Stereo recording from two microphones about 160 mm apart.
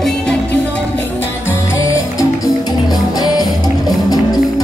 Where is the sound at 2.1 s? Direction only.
20° left (ahead or behind).